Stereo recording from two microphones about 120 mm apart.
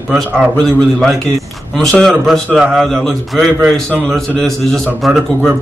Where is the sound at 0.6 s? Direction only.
5° left (ahead or behind).